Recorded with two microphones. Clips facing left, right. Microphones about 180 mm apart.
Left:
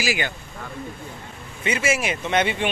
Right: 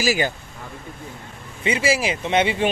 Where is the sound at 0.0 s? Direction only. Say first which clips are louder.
Right 4 dB; 40° right (ahead or behind).